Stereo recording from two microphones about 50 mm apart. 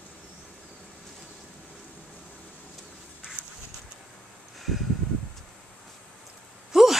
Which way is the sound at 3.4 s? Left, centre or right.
Right.